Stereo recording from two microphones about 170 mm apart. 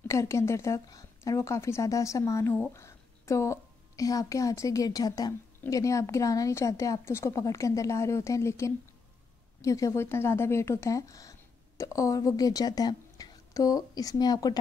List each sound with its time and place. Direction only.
0.1 s a woman's voice: 15° left (ahead or behind)